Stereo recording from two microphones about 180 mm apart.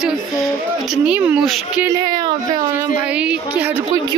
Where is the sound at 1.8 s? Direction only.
20° right (ahead or behind).